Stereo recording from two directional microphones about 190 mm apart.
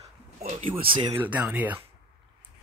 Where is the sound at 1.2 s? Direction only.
10° right (ahead or behind).